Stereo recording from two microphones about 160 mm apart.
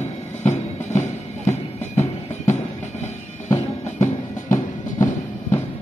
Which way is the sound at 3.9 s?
50° left (ahead or behind).